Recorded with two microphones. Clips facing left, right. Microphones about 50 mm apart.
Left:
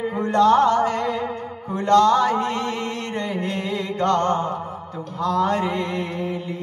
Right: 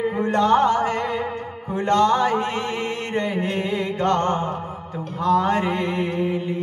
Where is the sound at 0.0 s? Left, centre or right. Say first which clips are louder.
Left 2 dB; right.